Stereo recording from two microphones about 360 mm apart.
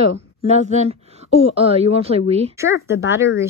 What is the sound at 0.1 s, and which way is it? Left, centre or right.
Speech, centre.